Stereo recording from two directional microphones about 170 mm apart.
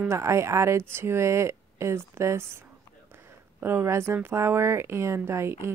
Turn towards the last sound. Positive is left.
turn(degrees=-15)  # may be behind; listen again after turning